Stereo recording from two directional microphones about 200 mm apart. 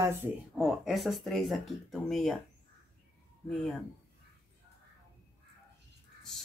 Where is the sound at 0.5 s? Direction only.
Centre (ahead or behind).